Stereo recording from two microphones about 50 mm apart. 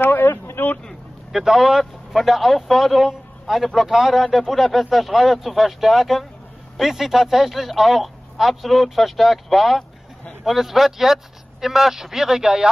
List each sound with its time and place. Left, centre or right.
0.0 s a sound: left
0.6 s vehicle: left
1.3 s a man's voice: centre